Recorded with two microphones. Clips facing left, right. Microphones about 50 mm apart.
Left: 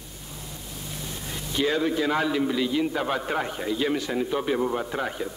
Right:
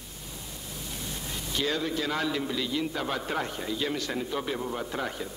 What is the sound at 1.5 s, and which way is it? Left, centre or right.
A man's voice, centre.